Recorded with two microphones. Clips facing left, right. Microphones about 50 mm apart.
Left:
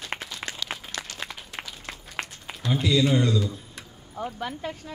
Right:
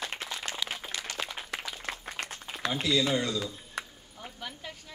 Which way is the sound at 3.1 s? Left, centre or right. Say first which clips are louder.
Left 6 dB; left.